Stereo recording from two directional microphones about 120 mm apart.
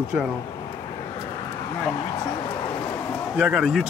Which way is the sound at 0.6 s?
30° left (ahead or behind).